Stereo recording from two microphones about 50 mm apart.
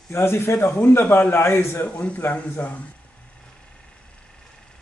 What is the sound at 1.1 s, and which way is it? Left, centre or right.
Speech, left.